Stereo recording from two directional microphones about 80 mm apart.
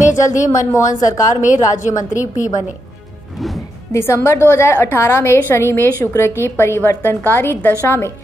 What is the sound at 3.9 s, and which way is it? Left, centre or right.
A woman's voice, left.